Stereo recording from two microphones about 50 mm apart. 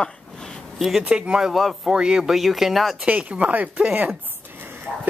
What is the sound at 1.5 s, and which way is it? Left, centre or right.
Speech, centre.